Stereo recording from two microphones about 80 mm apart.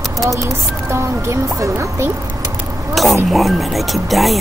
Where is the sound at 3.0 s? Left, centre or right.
Centre.